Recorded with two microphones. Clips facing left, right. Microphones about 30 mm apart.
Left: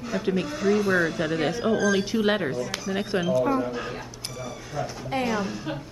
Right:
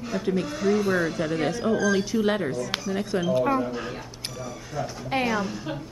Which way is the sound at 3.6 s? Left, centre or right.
Centre.